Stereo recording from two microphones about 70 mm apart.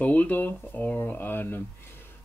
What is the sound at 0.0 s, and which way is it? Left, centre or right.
Speech, left.